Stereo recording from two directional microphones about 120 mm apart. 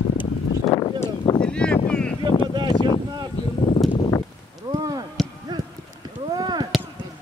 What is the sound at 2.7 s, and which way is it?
Speech, 35° left (ahead or behind).